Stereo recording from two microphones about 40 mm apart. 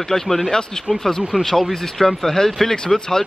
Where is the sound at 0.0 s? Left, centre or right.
Centre.